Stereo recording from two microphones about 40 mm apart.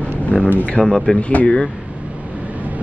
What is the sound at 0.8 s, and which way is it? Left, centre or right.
Speech, centre.